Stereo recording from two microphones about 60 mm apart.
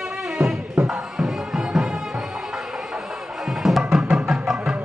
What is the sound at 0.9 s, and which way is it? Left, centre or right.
Music, centre.